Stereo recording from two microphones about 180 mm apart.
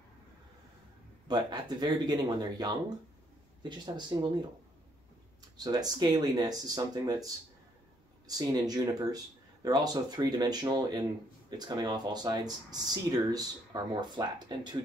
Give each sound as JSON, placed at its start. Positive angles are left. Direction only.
{"t": 1.2, "sound": "speech", "side_deg": -25}
{"t": 5.6, "sound": "speech", "side_deg": -20}